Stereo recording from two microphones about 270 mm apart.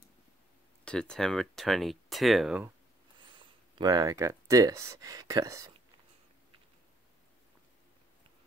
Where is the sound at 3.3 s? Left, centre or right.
Centre.